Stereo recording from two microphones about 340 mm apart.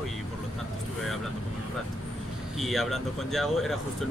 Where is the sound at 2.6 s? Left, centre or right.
Centre.